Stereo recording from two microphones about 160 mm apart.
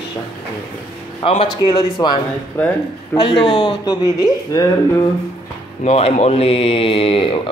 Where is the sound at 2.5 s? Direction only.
10° left (ahead or behind).